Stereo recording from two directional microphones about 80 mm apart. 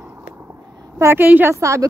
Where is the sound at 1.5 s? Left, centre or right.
Right.